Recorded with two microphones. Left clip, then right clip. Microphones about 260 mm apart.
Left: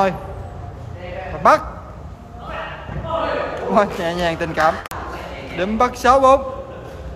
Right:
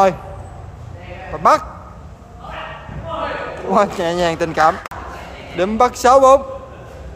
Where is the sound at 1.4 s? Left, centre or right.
Right.